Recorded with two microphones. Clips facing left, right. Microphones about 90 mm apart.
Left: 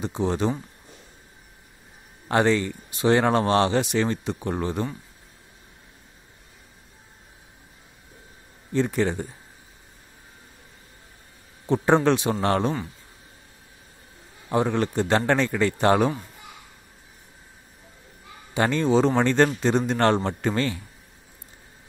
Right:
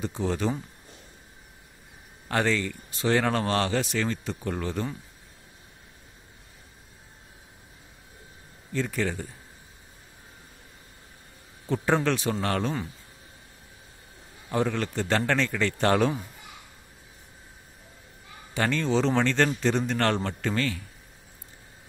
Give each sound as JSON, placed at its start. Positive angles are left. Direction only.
{"t": 0.0, "sound": "speech", "side_deg": 20}
{"t": 2.2, "sound": "speech", "side_deg": 20}
{"t": 8.7, "sound": "speech", "side_deg": 25}
{"t": 11.6, "sound": "speech", "side_deg": 20}
{"t": 14.5, "sound": "speech", "side_deg": 20}
{"t": 18.5, "sound": "a man's voice", "side_deg": 20}